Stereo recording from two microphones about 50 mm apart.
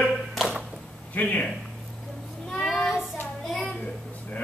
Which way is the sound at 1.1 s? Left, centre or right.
Left.